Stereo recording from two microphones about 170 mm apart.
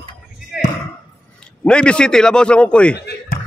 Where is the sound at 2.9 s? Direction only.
70° left (ahead or behind).